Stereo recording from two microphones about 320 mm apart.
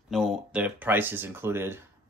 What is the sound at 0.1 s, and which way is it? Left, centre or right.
Speech, centre.